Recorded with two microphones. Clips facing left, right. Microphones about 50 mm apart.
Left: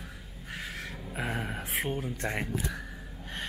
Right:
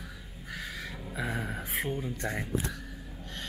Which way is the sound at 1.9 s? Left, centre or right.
Left.